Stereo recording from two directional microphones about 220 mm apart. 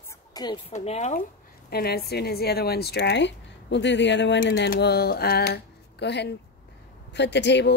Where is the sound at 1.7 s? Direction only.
45° left (ahead or behind).